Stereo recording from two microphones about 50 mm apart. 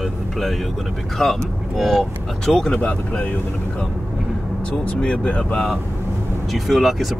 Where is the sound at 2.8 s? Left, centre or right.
Left.